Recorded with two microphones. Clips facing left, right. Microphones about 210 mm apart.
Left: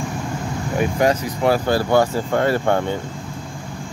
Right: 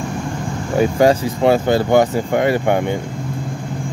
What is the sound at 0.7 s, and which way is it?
Speech, 25° right (ahead or behind).